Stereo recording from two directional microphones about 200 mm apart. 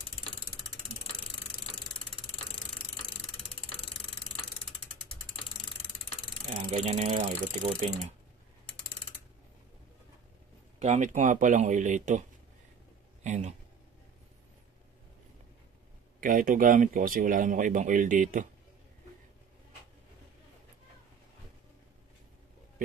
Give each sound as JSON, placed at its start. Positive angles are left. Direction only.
{"t": 6.5, "sound": "speech", "side_deg": -35}
{"t": 10.8, "sound": "a man's voice", "side_deg": -35}
{"t": 16.2, "sound": "speech", "side_deg": -45}